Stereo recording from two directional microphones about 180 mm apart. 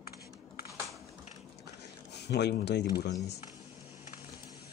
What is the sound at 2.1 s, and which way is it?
Speech, 70° left (ahead or behind).